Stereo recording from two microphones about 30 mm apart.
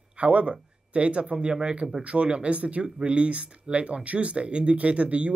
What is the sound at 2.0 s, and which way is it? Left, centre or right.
Speech, right.